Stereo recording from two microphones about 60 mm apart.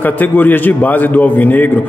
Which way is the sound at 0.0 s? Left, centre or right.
Left.